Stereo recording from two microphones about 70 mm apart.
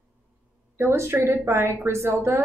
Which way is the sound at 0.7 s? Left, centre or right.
Right.